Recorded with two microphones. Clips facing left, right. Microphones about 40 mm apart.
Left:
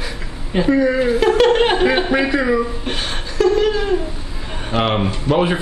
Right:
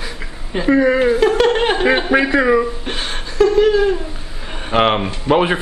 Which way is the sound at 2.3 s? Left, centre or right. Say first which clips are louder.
Right 3 dB; right.